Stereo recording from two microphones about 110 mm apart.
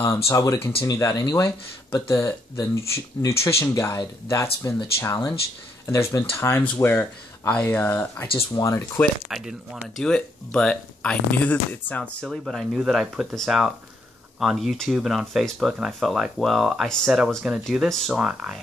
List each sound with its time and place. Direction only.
0.0 s speech: 30° left (ahead or behind)
1.2 s speech: 45° left (ahead or behind)
2.5 s speech: 40° left (ahead or behind)
2.8 s speech: 25° left (ahead or behind)
9.3 s speech: 5° right (ahead or behind)
10.0 s speech: 10° left (ahead or behind)
12.3 s speech: centre (ahead or behind)
18.1 s speech: 10° right (ahead or behind)